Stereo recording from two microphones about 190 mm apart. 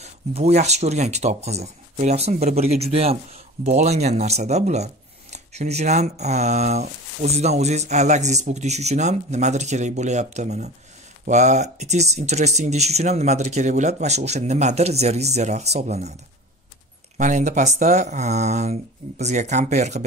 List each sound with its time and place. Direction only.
0.0 s speech: 35° right (ahead or behind)
17.2 s speech: 40° right (ahead or behind)